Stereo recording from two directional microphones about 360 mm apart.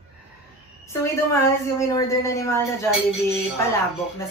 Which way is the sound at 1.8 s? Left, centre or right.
Centre.